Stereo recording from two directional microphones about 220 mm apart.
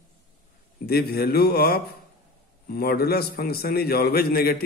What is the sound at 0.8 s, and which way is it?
A man's voice, 45° left (ahead or behind).